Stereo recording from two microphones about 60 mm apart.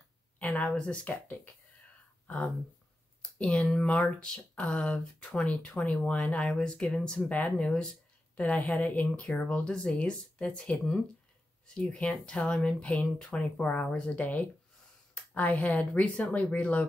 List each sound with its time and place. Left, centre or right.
0.4 s a woman's voice: left
3.3 s speech: centre
15.3 s speech: left